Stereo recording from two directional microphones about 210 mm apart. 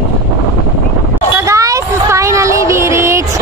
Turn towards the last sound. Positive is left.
turn(degrees=-15)  # may be behind; listen again after turning